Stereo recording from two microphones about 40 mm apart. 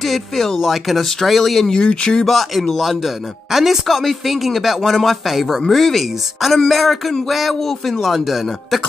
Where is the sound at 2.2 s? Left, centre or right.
Centre.